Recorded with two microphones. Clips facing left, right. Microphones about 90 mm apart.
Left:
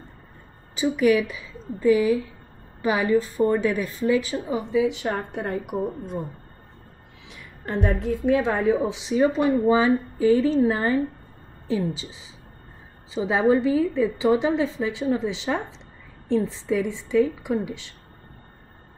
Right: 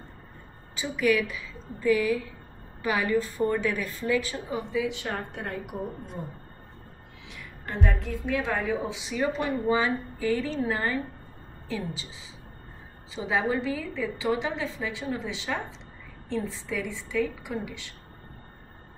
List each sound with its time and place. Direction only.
0.7 s a woman's voice: 20° left (ahead or behind)
7.6 s a woman's voice: 30° left (ahead or behind)
13.1 s a woman's voice: 25° left (ahead or behind)